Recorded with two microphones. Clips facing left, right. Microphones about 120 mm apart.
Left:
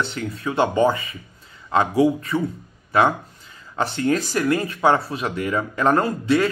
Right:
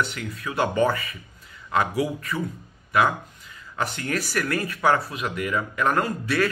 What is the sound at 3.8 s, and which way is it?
A man's voice, 30° left (ahead or behind).